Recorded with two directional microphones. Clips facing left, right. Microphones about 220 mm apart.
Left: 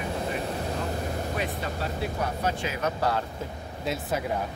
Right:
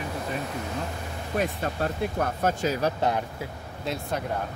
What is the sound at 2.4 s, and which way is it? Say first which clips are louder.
Speech: right 5 dB; 45° right (ahead or behind).